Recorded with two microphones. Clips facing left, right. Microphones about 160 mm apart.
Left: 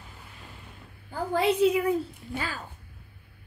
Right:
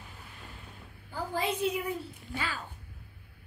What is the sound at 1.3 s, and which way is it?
Speech, 75° left (ahead or behind).